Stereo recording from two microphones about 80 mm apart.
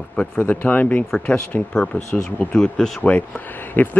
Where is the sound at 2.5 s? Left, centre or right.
Centre.